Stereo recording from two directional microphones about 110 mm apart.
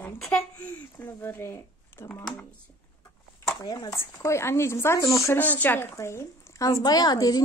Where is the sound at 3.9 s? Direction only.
25° left (ahead or behind).